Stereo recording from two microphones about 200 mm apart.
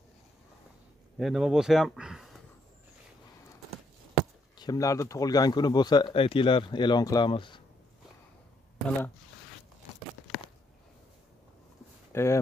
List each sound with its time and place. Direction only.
1.1 s speech: centre (ahead or behind)
4.2 s chop: centre (ahead or behind)
4.6 s speech: 20° left (ahead or behind)
8.7 s speech: 5° left (ahead or behind)
12.1 s speech: 15° left (ahead or behind)